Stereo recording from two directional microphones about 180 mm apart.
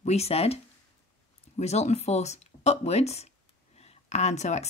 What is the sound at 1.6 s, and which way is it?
A woman's voice, 35° left (ahead or behind).